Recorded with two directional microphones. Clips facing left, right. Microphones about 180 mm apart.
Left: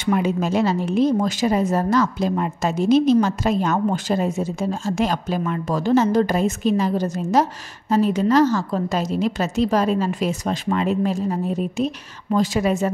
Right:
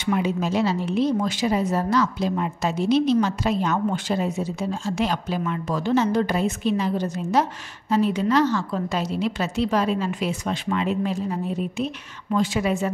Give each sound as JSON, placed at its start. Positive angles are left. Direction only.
{"t": 0.0, "sound": "a woman's voice", "side_deg": 50}